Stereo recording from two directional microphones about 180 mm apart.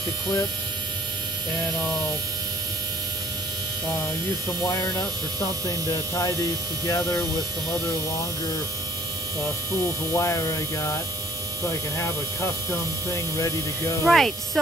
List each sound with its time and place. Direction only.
6.9 s speech: 20° left (ahead or behind)
10.1 s hum: 15° left (ahead or behind)
13.1 s hum: 15° left (ahead or behind)
14.0 s speech: centre (ahead or behind)